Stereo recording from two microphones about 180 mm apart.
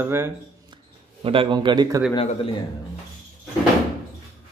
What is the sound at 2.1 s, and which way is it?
Speech, 30° left (ahead or behind).